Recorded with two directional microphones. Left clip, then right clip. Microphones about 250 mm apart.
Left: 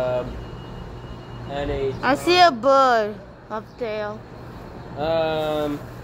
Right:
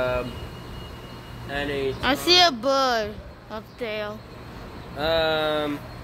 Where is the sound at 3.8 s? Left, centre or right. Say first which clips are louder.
Left 2 dB; centre.